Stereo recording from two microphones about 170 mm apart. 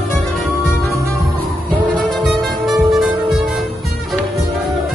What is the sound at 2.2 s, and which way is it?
Music, centre (ahead or behind).